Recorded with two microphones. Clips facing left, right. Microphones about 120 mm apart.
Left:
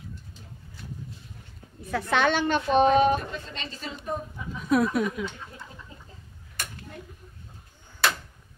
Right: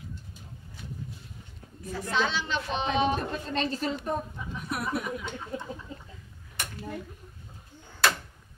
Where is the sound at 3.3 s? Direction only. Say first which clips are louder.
Right 7 dB; 45° right (ahead or behind).